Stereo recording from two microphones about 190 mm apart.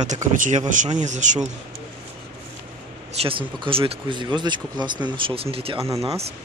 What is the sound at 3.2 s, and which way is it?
Speech, 30° right (ahead or behind).